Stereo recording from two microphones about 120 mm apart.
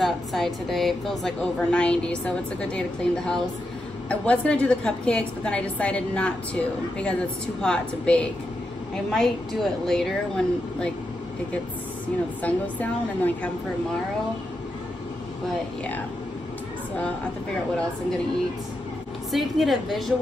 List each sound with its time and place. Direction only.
0.0 s a woman's voice: centre (ahead or behind)
12.4 s a woman's voice: 10° left (ahead or behind)
19.3 s a woman's voice: centre (ahead or behind)